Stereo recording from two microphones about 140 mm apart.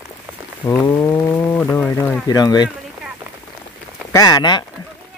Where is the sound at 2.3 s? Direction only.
30° left (ahead or behind).